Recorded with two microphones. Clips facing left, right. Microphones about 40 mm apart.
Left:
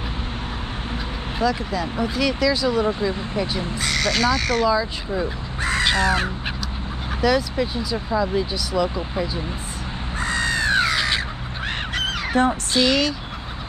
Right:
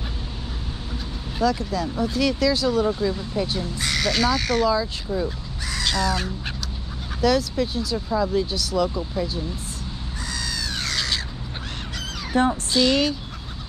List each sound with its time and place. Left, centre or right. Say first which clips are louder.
1.4 s speech: even; centre
2.8 s speech: left 1 dB; left
3.7 s speech: left 2 dB; centre
5.1 s speech: left 1 dB; left
7.2 s speech: left 1 dB; centre
8.9 s speech: left 1 dB; left
10.2 s crow: left 9 dB; left
10.8 s crow: left 6 dB; left
11.9 s crow: left 2 dB; left
12.7 s speech: left 1 dB; centre